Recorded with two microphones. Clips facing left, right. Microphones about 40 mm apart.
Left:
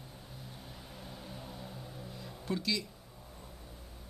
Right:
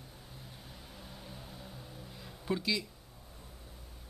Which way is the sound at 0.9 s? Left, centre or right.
Centre.